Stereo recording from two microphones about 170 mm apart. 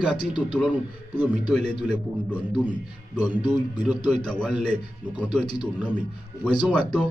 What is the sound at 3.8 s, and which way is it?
Speech, 5° right (ahead or behind).